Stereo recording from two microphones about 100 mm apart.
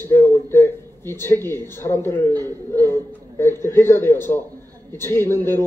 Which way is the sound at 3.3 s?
25° left (ahead or behind).